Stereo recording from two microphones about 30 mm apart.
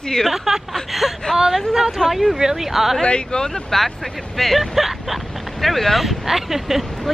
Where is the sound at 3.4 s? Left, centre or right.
Centre.